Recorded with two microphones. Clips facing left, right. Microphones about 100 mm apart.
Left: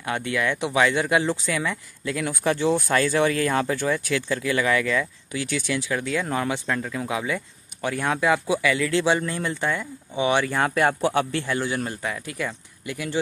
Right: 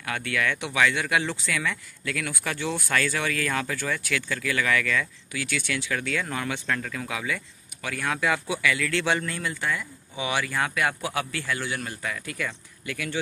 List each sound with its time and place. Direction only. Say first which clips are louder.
0.0 s speech: left 3 dB; 25° left (ahead or behind)